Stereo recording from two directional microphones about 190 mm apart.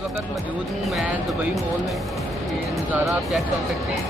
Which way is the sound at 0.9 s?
Centre (ahead or behind).